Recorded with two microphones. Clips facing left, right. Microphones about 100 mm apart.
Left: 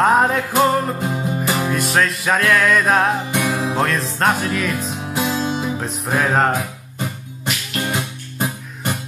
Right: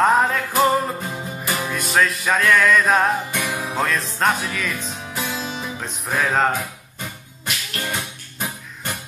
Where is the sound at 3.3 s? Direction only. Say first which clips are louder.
Left 5 dB; 25° left (ahead or behind).